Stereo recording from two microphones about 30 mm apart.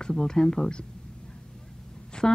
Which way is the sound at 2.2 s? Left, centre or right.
Left.